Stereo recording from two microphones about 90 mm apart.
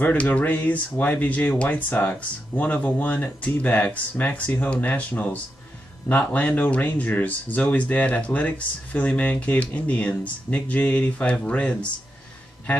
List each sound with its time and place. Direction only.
0.0 s speech: 20° left (ahead or behind)